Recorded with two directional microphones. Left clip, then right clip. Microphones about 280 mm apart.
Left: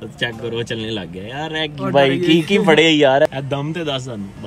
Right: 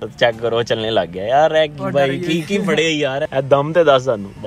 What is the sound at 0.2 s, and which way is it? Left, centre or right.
Speech, centre.